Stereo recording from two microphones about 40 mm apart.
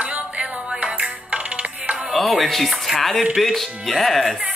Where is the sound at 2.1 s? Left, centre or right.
Centre.